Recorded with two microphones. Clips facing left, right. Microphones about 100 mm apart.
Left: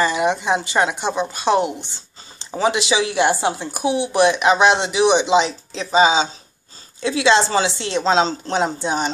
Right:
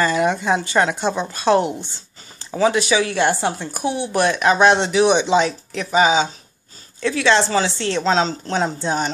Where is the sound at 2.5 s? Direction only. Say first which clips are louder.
Right 2 dB; 25° left (ahead or behind).